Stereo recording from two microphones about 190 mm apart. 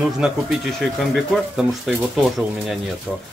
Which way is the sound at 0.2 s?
Centre (ahead or behind).